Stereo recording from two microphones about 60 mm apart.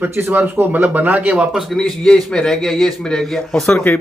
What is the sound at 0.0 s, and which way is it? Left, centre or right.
Speech, right.